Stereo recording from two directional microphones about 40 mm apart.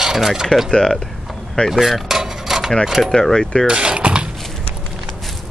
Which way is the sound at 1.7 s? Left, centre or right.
Centre.